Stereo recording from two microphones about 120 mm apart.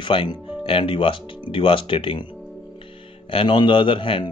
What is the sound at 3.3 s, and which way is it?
A man's voice, 45° left (ahead or behind).